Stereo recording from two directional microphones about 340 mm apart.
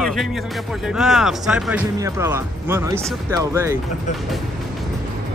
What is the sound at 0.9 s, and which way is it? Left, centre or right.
Speech, centre.